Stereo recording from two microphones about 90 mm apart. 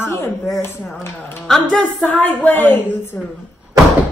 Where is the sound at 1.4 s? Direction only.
10° left (ahead or behind).